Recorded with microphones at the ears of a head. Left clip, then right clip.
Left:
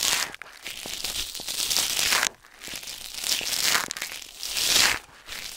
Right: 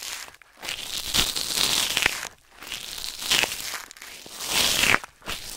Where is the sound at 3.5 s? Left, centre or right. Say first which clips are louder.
Left 10 dB; left.